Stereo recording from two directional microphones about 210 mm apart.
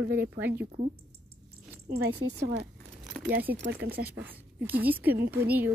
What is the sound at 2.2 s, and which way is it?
Speech, 55° right (ahead or behind).